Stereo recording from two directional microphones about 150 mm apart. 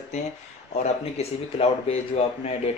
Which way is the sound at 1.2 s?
45° left (ahead or behind).